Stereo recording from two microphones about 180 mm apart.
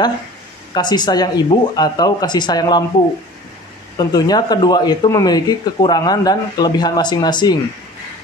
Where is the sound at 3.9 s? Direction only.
20° left (ahead or behind).